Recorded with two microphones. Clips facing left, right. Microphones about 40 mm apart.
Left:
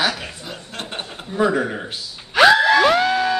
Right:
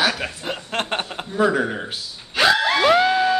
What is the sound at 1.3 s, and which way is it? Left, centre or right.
Speech, centre.